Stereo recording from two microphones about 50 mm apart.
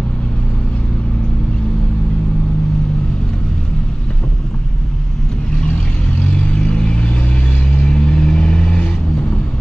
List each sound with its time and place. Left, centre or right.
6.3 s vehicle: left